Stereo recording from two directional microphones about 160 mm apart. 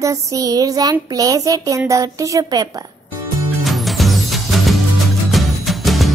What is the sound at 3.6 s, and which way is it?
Music, centre (ahead or behind).